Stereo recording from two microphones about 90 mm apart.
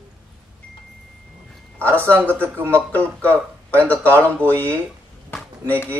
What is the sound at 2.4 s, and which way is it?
Speech, 25° right (ahead or behind).